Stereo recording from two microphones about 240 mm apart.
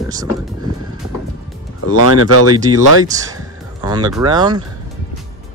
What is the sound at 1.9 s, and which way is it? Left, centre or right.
Speech, left.